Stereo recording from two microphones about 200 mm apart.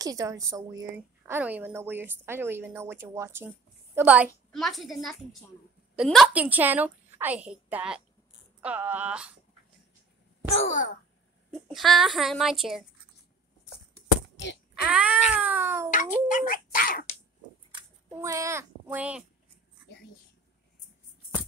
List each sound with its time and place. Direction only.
0.0 s a woman's voice: 15° right (ahead or behind)
10.5 s sigh: 40° left (ahead or behind)
11.7 s a woman's voice: centre (ahead or behind)
14.9 s a woman's voice: 5° right (ahead or behind)
15.9 s speech: 40° left (ahead or behind)
18.1 s a woman's voice: 15° right (ahead or behind)